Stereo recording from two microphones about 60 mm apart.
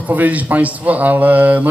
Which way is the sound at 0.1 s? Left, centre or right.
Right.